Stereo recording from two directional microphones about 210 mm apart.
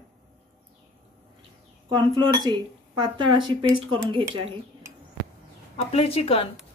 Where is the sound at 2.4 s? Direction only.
20° right (ahead or behind).